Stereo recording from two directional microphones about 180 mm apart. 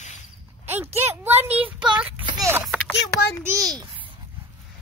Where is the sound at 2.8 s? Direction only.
15° left (ahead or behind).